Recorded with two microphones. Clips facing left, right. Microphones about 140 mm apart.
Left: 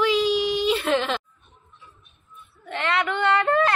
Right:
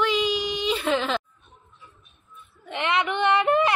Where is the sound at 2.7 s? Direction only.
15° right (ahead or behind).